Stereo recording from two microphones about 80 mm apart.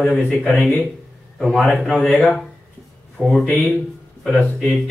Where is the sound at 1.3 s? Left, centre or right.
Centre.